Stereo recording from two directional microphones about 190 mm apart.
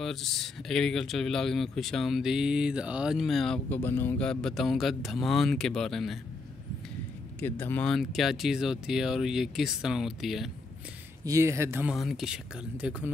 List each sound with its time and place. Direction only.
0.0 s speech: centre (ahead or behind)
7.3 s speech: 10° left (ahead or behind)
11.2 s speech: 15° right (ahead or behind)
11.9 s speech: centre (ahead or behind)